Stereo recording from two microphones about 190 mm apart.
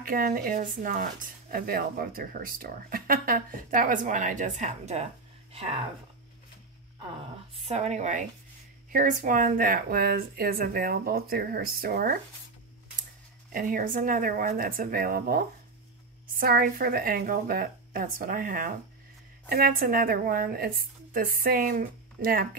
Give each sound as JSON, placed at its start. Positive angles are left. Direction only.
{"t": 0.0, "sound": "speech", "side_deg": -50}
{"t": 7.5, "sound": "speech", "side_deg": -35}
{"t": 13.5, "sound": "speech", "side_deg": -45}